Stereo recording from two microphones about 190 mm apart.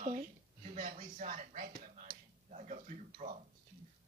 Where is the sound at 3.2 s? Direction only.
40° right (ahead or behind).